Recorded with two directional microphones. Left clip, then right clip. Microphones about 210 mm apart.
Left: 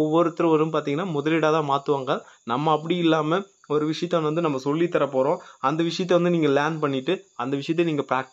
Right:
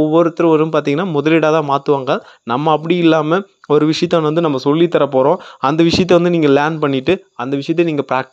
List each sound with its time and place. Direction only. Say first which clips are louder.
0.0 s a man's voice: right 8 dB; 30° right (ahead or behind)